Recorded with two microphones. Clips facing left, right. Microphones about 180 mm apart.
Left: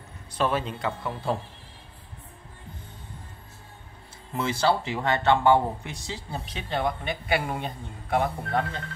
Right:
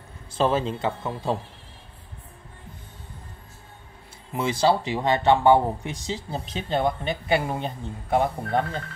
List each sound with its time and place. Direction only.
0.3 s speech: 25° right (ahead or behind)
4.3 s speech: 15° right (ahead or behind)